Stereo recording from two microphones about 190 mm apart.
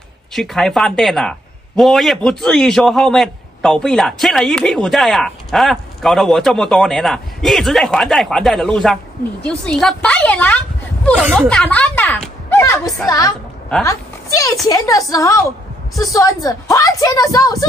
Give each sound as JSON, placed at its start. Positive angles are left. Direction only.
{"t": 0.3, "sound": "a man's voice", "side_deg": 0}
{"t": 13.8, "sound": "a woman's voice", "side_deg": 15}